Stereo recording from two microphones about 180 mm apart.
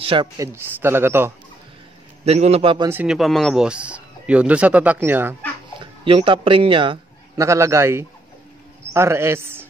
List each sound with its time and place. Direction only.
0.0 s a man's voice: 30° right (ahead or behind)
0.4 s speech: 15° right (ahead or behind)
2.2 s a man's voice: 35° right (ahead or behind)
2.9 s speech: 5° right (ahead or behind)
5.8 s a man's voice: 30° right (ahead or behind)
7.4 s speech: 15° right (ahead or behind)